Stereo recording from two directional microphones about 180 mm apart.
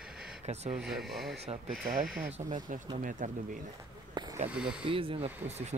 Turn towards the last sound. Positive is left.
turn(degrees=-40)  # may be behind; listen again after turning